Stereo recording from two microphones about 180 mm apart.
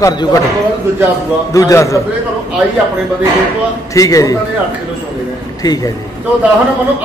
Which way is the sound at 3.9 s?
20° left (ahead or behind).